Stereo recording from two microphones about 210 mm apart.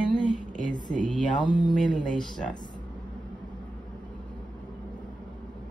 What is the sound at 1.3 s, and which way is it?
Speech, 20° left (ahead or behind).